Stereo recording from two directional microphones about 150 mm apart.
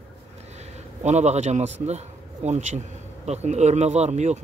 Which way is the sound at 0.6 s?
50° right (ahead or behind).